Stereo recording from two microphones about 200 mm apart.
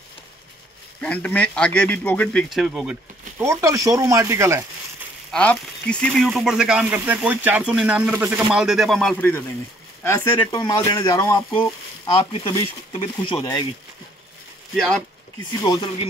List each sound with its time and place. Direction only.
1.0 s speech: 5° left (ahead or behind)
3.3 s speech: 15° right (ahead or behind)
5.3 s speech: 5° left (ahead or behind)
10.0 s speech: 20° left (ahead or behind)
12.2 s speech: 30° left (ahead or behind)
14.8 s speech: 5° left (ahead or behind)
15.6 s speech: 20° left (ahead or behind)